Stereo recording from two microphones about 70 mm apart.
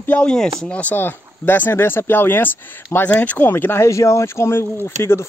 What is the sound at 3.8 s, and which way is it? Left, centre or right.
Speech, left.